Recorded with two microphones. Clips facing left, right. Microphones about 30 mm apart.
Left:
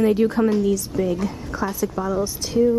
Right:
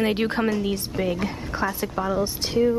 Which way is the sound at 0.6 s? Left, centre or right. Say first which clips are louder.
Left 4 dB; right.